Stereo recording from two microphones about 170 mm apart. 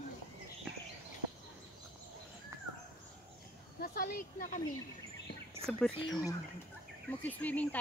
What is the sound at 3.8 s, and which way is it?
Speech, 60° left (ahead or behind).